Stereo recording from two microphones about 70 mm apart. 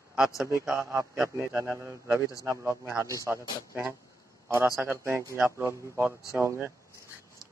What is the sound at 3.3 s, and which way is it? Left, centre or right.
Speech, right.